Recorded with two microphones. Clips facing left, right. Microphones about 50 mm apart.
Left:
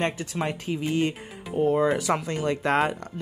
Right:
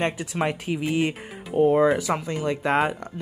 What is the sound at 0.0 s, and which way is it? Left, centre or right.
Speech, centre.